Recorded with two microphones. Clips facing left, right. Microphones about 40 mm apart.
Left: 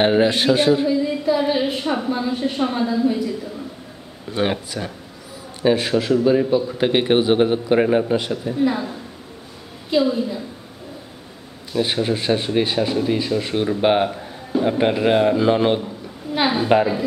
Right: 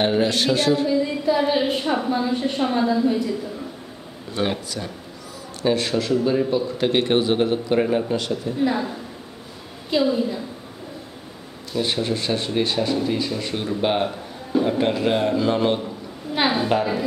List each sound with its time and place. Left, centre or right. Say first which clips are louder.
0.0 s a man's voice: left 4 dB; left
0.8 s a woman's voice: left 1 dB; centre
4.3 s a man's voice: left 3 dB; left
8.5 s a woman's voice: left 2 dB; centre
11.7 s a man's voice: left 3 dB; centre
16.3 s a woman's voice: left 1 dB; centre